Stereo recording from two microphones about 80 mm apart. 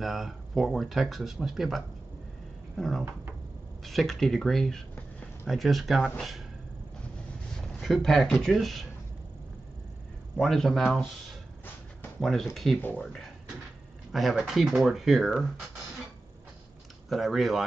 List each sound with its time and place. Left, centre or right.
0.0 s speech: centre
7.8 s speech: centre
10.3 s speech: centre
12.2 s speech: centre
12.8 s speech: centre
14.1 s speech: centre
17.1 s speech: centre